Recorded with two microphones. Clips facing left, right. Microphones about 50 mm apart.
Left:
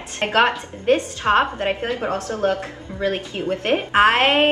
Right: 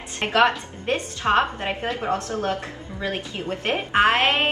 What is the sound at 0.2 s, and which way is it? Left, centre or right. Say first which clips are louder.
Speech: left 3 dB; centre.